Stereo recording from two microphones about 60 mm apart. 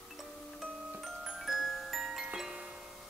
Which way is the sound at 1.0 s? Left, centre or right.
Centre.